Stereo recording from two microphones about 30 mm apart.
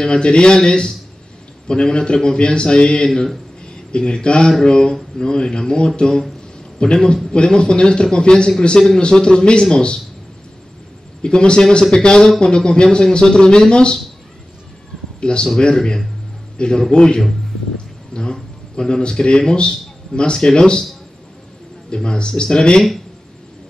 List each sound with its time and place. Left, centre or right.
0.0 s a man's voice: left
8.7 s a man's voice: centre
9.2 s a man's voice: left
11.2 s a man's voice: left
15.1 s a man's voice: left
18.1 s a sound: left
18.9 s a man's voice: left
21.9 s a man's voice: left